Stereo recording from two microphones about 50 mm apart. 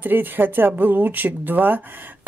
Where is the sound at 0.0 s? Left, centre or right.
Right.